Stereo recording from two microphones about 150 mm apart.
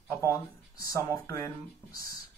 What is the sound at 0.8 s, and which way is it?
Speech, 20° left (ahead or behind).